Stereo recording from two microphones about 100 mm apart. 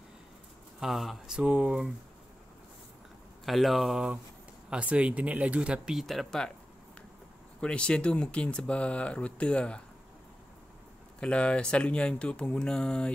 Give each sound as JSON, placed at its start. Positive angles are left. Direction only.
{"t": 0.7, "sound": "speech", "side_deg": 0}
{"t": 3.4, "sound": "speech", "side_deg": 0}
{"t": 7.6, "sound": "speech", "side_deg": 10}
{"t": 11.1, "sound": "speech", "side_deg": 10}